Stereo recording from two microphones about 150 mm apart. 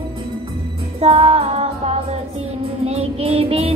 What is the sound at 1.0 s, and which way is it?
Music, 40° right (ahead or behind).